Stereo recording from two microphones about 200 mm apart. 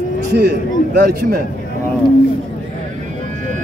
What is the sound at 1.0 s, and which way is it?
Speech, 50° right (ahead or behind).